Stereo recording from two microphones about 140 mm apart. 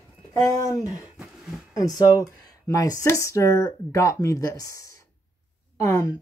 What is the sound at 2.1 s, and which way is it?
A woman's voice, 25° left (ahead or behind).